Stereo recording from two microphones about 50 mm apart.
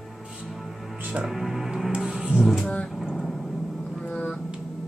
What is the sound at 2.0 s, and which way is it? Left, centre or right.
Car, centre.